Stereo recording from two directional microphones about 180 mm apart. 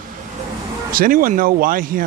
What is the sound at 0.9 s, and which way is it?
Speech, 50° right (ahead or behind).